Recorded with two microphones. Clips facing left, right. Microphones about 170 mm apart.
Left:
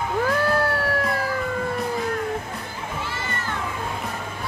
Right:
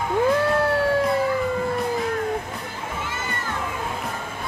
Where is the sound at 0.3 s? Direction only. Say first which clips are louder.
Right 1 dB; 25° right (ahead or behind).